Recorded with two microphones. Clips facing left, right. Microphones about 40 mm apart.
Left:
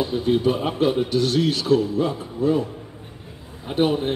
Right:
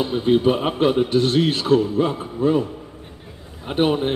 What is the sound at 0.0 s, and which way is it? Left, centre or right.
Speech, right.